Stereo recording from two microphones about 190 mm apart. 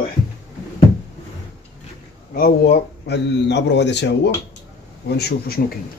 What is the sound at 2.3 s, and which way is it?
A man's voice, 55° left (ahead or behind).